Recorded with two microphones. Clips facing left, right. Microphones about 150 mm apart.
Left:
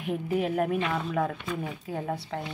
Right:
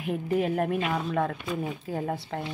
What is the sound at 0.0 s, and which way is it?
Speech, centre (ahead or behind).